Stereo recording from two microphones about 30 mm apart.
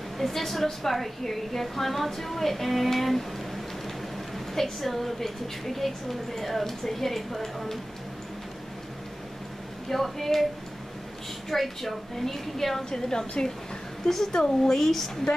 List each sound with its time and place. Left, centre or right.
0.2 s a woman's voice: centre
4.6 s a woman's voice: centre
9.8 s a woman's voice: centre
11.5 s a woman's voice: centre
12.9 s a woman's voice: centre